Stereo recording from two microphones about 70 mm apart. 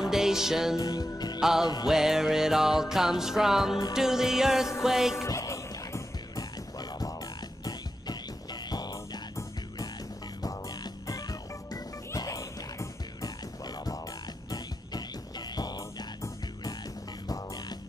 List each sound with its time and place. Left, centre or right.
0.0 s music: centre
0.7 s speech: left
1.1 s music: left
1.4 s music: centre
5.1 s music: left
6.3 s music: left
8.6 s music: left
10.4 s music: left
12.2 s music: left
14.5 s music: left